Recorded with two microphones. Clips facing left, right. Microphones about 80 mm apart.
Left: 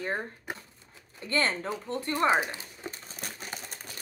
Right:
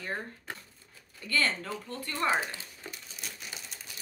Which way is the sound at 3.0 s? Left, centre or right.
Left.